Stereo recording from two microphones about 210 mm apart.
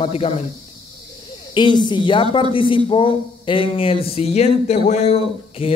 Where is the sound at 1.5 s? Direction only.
20° left (ahead or behind).